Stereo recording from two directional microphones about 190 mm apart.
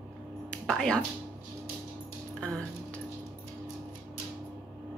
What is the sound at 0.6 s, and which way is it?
Speech, 5° left (ahead or behind).